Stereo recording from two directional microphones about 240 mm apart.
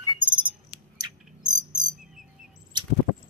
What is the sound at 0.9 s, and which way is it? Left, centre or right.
Bird, centre.